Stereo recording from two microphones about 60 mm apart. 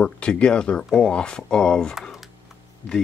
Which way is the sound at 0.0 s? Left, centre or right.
Centre.